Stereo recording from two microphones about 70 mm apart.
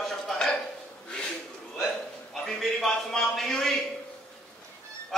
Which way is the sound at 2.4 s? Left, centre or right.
Centre.